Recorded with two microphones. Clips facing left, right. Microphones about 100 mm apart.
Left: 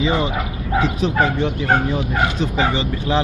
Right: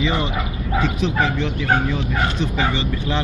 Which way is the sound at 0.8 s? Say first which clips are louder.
Left 2 dB; 40° left (ahead or behind).